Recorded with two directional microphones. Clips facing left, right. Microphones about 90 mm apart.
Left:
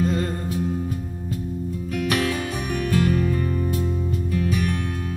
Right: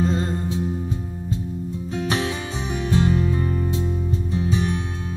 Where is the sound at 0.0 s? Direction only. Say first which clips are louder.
Right 1 dB; 25° right (ahead or behind).